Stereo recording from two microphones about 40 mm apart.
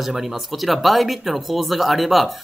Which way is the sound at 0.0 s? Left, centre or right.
Centre.